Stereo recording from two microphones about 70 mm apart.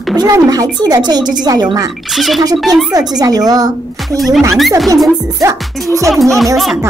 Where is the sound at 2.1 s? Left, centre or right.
Centre.